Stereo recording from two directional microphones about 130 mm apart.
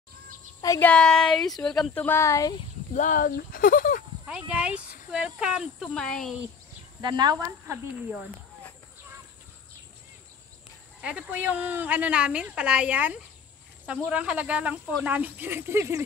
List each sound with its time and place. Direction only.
0.7 s speech: 10° left (ahead or behind); by 2.5 s 25° left (ahead or behind)
2.9 s speech: 80° left
4.3 s a woman's voice: 10° right (ahead or behind)
5.9 s speech: 5° left (ahead or behind)
7.0 s speech: 35° right (ahead or behind)
7.4 s speech: 20° right (ahead or behind)
11.0 s a woman's voice: 10° right (ahead or behind)